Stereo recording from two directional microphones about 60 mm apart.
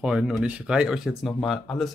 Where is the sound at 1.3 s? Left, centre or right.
Centre.